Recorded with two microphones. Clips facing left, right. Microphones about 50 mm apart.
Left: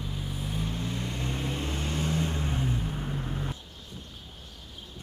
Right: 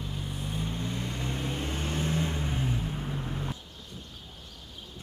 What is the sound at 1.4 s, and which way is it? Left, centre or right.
Vehicle, right.